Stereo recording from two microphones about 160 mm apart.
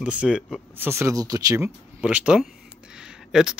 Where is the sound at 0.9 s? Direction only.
15° right (ahead or behind).